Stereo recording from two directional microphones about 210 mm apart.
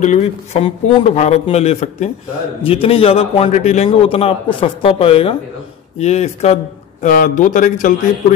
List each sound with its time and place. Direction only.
0.0 s a man's voice: 30° left (ahead or behind)